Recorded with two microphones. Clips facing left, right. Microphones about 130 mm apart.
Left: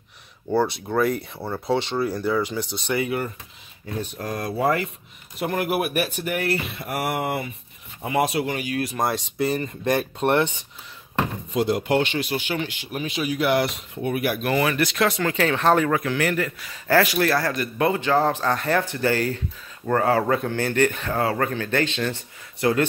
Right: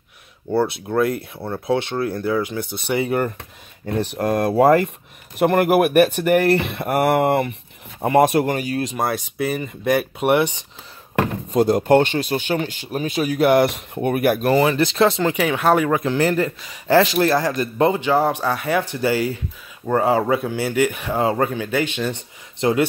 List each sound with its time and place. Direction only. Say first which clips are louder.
0.5 s speech: right 2 dB; centre (ahead or behind)
2.6 s speech: right 3 dB; 55° right (ahead or behind)
8.0 s speech: right 7 dB; 50° right (ahead or behind)
8.9 s speech: right 2 dB; centre (ahead or behind)
11.1 s speech: right 5 dB; 45° right (ahead or behind)
14.5 s speech: right 5 dB; 25° right (ahead or behind)
15.3 s speech: right 2 dB; 10° right (ahead or behind)
15.9 s speech: right 4 dB; 25° right (ahead or behind)